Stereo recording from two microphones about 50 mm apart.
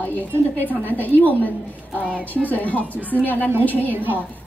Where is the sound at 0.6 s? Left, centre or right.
Left.